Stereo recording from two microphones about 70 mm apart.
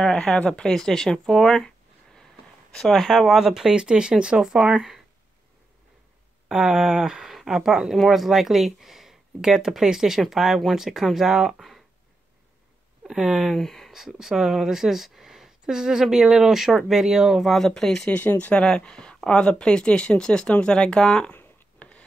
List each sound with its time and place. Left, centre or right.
0.0 s speech: centre
2.7 s speech: centre
6.5 s speech: centre
13.0 s speech: centre
13.6 s speech: centre
13.9 s speech: centre
18.1 s speech: left
18.6 s speech: centre
21.3 s a sound: left